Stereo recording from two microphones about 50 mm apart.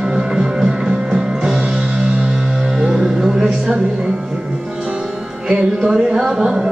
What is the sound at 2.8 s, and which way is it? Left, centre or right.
Music, centre.